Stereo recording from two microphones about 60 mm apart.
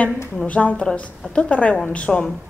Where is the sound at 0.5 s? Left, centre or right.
Left.